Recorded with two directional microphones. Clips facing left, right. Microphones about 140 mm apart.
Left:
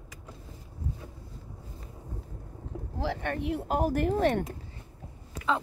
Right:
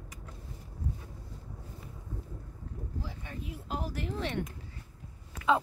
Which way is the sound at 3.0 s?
75° left (ahead or behind).